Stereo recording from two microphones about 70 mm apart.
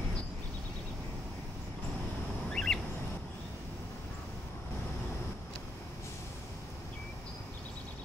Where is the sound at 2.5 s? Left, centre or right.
Centre.